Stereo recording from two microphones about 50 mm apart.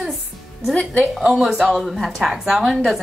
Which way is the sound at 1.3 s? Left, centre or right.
Centre.